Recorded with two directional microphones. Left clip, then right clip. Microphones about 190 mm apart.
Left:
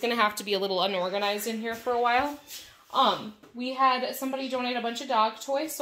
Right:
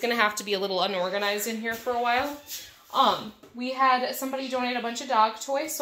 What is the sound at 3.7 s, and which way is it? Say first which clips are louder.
Speech: right 2 dB; 30° left (ahead or behind).